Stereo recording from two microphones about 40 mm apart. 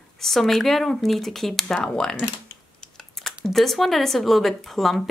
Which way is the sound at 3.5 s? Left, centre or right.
Centre.